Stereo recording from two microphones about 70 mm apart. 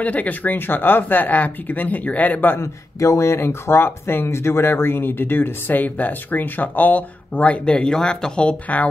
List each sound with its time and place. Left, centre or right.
0.0 s speech: left
2.6 s speech: left; by 8.8 s centre